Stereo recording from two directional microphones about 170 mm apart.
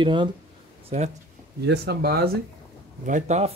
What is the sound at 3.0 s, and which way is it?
Speech, 45° right (ahead or behind).